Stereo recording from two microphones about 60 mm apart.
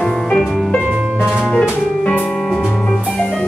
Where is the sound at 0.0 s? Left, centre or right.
Centre.